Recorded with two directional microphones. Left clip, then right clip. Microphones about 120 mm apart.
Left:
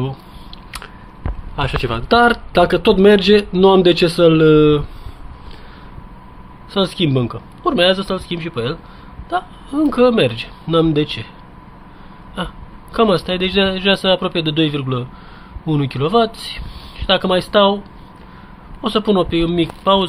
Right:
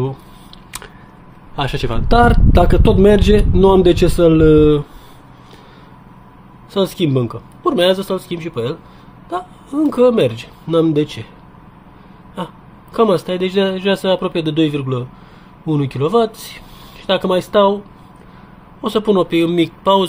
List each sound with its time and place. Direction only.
1.6 s a man's voice: 25° right (ahead or behind)
6.7 s a man's voice: 20° right (ahead or behind)
12.9 s a man's voice: 20° right (ahead or behind)
18.8 s a man's voice: 20° right (ahead or behind)